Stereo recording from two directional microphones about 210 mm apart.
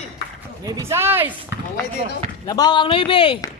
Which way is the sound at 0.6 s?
15° right (ahead or behind).